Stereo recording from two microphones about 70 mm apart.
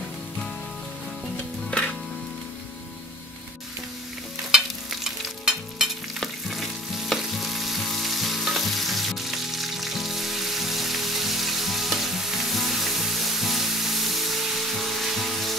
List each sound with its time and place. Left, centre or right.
5.0 s frying: centre